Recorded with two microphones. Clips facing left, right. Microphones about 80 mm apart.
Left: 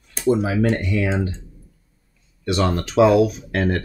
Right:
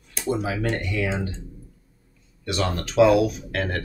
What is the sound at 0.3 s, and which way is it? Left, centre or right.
Speech, left.